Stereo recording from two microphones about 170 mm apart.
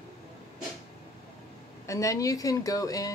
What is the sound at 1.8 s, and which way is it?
A woman's voice, 20° left (ahead or behind).